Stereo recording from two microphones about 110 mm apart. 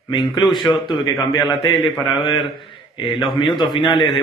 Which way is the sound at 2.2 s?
50° left (ahead or behind).